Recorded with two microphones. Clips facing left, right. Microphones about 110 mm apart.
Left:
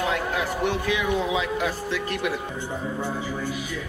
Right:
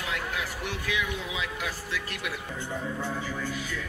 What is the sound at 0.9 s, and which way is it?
Speech, 55° left (ahead or behind).